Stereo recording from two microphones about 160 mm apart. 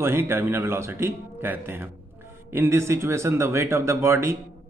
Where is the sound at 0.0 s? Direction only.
15° right (ahead or behind).